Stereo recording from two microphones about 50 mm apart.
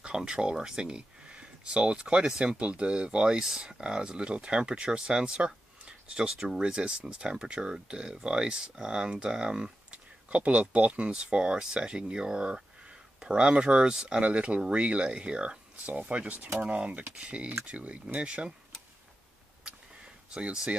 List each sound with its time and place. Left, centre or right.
0.0 s speech: centre
10.3 s speech: right; by 14.2 s centre
14.2 s speech: right